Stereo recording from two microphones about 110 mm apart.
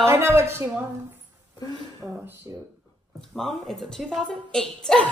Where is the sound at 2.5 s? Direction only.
25° right (ahead or behind).